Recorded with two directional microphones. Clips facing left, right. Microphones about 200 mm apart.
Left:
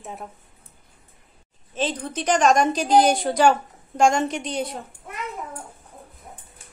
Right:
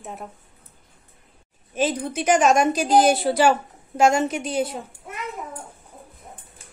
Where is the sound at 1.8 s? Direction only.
10° right (ahead or behind).